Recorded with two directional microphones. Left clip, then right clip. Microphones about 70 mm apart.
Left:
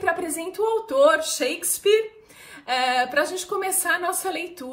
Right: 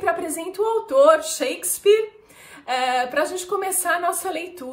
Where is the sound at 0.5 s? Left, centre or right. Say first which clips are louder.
Right 3 dB; centre.